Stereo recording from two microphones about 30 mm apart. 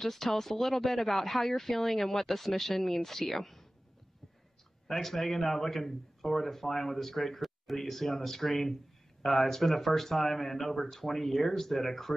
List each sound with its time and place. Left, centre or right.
0.0 s a man's voice: centre
4.8 s a man's voice: centre